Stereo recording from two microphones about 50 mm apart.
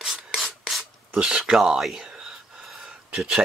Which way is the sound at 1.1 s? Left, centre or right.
Centre.